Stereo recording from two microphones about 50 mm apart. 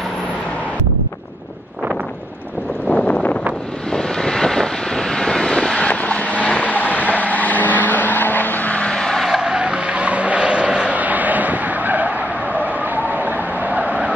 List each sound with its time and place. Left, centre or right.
3.1 s wind noise: left
3.9 s vehicle: centre
5.9 s vehicle: left
8.8 s vehicle: centre
9.4 s skidding: centre
11.0 s vehicle: right